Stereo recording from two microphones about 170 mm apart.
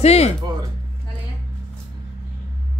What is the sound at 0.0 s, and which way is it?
Speech, 40° left (ahead or behind).